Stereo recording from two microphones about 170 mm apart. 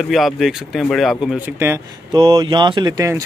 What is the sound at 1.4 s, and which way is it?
Speech, 15° right (ahead or behind).